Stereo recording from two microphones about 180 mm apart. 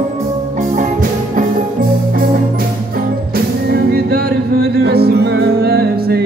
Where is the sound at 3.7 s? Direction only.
60° right (ahead or behind).